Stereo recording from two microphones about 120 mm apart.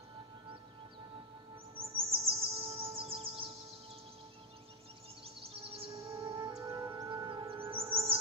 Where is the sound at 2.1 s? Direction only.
50° right (ahead or behind).